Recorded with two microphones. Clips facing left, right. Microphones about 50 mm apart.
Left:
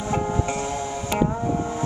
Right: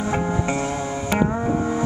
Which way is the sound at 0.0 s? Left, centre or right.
Right.